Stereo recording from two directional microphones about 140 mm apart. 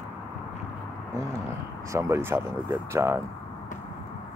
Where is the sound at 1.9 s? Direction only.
20° right (ahead or behind).